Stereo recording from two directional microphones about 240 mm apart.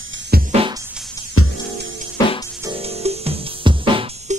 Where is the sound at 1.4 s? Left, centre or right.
Left.